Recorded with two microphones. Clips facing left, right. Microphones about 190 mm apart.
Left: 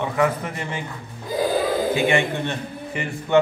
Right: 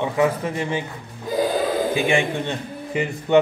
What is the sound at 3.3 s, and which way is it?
Speech, 20° right (ahead or behind).